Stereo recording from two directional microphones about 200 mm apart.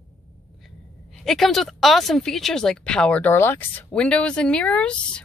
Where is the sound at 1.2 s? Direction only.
Centre (ahead or behind).